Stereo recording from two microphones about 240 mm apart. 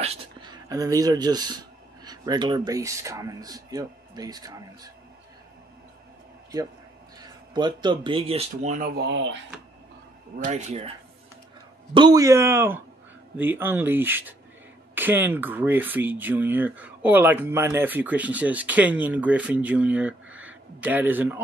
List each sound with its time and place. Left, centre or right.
0.0 s speech: right
7.2 s speech: centre; by 9.4 s right
10.4 s speech: right
11.9 s speech: centre